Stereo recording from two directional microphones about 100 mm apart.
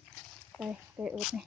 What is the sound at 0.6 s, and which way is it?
Speech, 15° right (ahead or behind).